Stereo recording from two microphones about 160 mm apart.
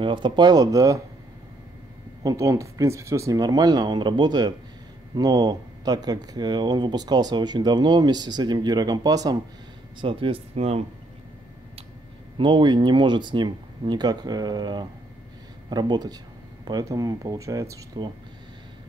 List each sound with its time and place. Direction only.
0.0 s speech: 30° right (ahead or behind)
2.2 s speech: 20° right (ahead or behind)
9.9 s speech: 35° right (ahead or behind)
12.4 s speech: 30° right (ahead or behind)